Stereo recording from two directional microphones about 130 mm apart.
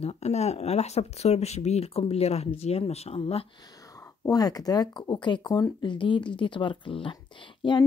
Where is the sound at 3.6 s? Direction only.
30° left (ahead or behind).